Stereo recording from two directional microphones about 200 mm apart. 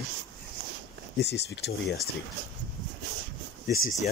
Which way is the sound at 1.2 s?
55° left (ahead or behind).